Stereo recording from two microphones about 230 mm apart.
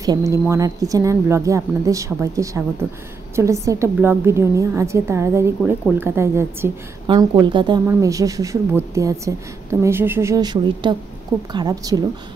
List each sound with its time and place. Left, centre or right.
0.0 s a woman's voice: centre